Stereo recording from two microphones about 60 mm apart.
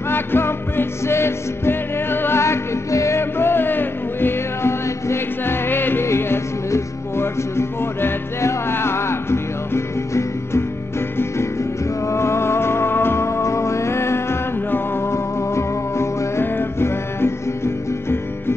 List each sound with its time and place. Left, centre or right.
0.1 s music: left
3.2 s music: left
12.1 s music: left